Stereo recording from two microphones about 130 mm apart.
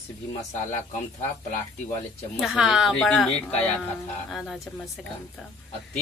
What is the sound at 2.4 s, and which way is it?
Speech, 5° right (ahead or behind).